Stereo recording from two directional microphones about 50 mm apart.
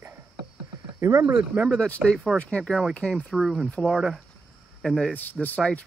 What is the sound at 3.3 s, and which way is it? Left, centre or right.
Speech, centre.